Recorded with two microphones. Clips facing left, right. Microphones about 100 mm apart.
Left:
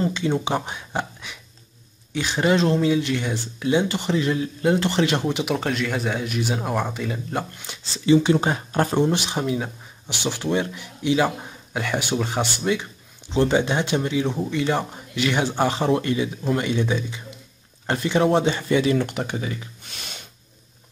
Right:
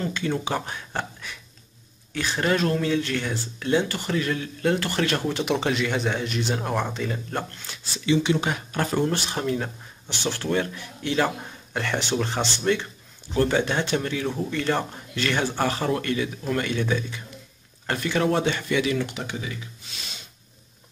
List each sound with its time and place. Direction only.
0.0 s speech: 20° left (ahead or behind)
5.4 s speech: 5° left (ahead or behind)
7.6 s speech: 20° left (ahead or behind)
8.0 s speech: 35° left (ahead or behind)
9.1 s speech: 15° left (ahead or behind); by 18.9 s 30° left (ahead or behind)
18.9 s speech: 50° left (ahead or behind)